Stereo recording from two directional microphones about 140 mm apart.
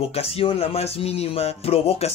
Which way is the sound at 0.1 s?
45° left (ahead or behind).